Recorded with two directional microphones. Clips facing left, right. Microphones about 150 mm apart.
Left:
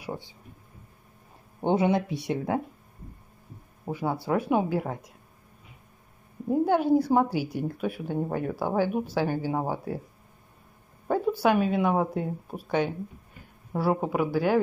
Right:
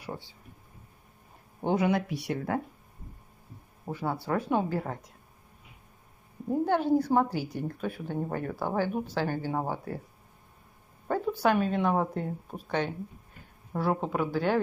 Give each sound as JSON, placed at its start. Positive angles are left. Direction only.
{"t": 0.0, "sound": "a sound", "side_deg": 10}
{"t": 1.6, "sound": "speech", "side_deg": 25}
{"t": 3.8, "sound": "speech", "side_deg": 10}
{"t": 6.5, "sound": "speech", "side_deg": 10}
{"t": 11.1, "sound": "speech", "side_deg": 10}